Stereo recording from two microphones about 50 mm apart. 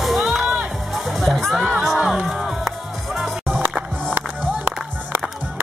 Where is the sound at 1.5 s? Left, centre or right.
Centre.